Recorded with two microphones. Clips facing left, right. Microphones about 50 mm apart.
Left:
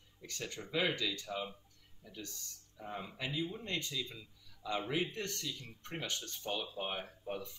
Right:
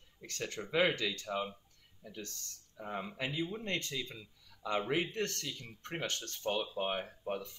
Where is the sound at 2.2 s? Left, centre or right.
Right.